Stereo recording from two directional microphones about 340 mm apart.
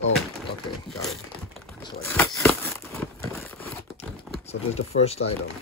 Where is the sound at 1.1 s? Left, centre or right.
Centre.